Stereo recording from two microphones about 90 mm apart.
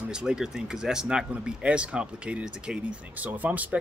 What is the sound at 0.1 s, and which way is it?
Speech, 10° right (ahead or behind).